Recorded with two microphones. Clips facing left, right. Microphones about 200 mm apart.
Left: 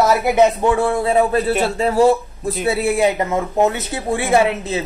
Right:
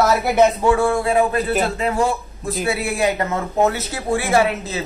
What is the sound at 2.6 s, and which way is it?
Speech, 25° left (ahead or behind).